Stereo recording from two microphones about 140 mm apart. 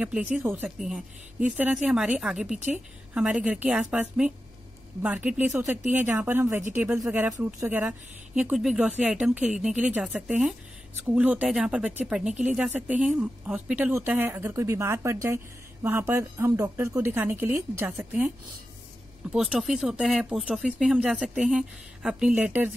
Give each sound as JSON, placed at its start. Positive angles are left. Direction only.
{"t": 0.0, "sound": "a woman's voice", "side_deg": -10}
{"t": 0.7, "sound": "a woman's voice", "side_deg": -5}
{"t": 8.4, "sound": "a woman's voice", "side_deg": -5}
{"t": 19.3, "sound": "speech", "side_deg": 0}